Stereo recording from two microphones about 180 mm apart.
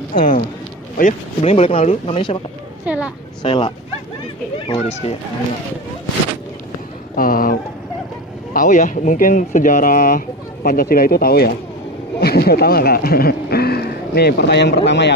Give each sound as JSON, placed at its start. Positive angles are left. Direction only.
{"t": 0.1, "sound": "speech", "side_deg": 50}
{"t": 2.8, "sound": "a woman's voice", "side_deg": -10}
{"t": 3.4, "sound": "speech", "side_deg": 30}
{"t": 7.2, "sound": "speech", "side_deg": 50}
{"t": 8.5, "sound": "a man's voice", "side_deg": 45}